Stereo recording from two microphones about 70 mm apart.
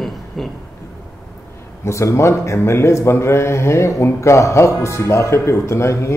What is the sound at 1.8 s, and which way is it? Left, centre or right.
A man's voice, left.